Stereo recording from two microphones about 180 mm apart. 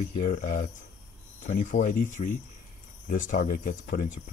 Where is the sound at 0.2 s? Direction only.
45° left (ahead or behind).